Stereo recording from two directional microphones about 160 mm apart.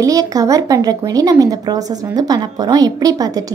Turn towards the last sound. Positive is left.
turn(degrees=-20)  # may be behind; listen again after turning